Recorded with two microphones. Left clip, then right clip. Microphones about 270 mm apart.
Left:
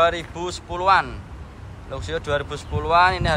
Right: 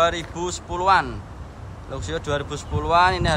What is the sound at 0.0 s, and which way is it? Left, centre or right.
Speech, centre.